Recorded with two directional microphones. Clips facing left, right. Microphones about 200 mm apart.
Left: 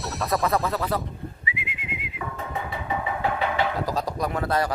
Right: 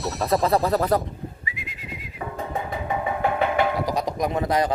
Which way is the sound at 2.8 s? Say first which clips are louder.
Right 2 dB; 50° right (ahead or behind).